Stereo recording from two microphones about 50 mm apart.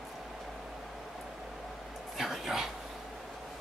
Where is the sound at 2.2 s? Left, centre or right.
Centre.